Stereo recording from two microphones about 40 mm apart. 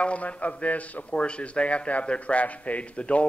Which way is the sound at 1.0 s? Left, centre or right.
Left.